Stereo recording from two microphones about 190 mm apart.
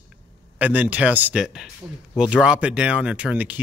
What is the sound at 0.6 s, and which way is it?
Speech, 10° right (ahead or behind).